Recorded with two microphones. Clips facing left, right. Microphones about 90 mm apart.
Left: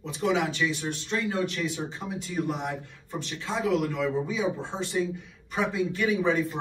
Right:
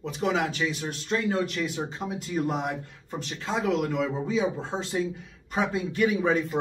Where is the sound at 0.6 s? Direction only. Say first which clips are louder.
Left 1 dB; 25° right (ahead or behind).